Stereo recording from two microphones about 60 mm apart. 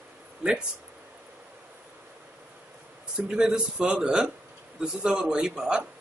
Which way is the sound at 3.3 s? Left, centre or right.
Centre.